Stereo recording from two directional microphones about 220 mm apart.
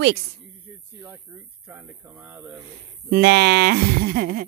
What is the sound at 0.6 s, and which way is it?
Speech, 10° right (ahead or behind).